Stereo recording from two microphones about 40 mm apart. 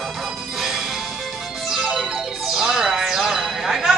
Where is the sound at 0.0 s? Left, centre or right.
Centre.